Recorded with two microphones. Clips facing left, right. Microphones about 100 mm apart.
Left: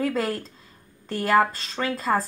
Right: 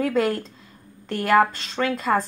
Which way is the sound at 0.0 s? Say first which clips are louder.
Right 4 dB; centre (ahead or behind).